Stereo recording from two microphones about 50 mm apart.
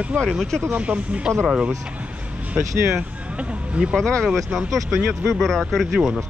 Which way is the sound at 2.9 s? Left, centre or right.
Right.